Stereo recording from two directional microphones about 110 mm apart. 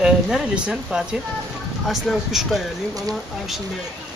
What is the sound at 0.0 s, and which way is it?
Speech, 10° right (ahead or behind).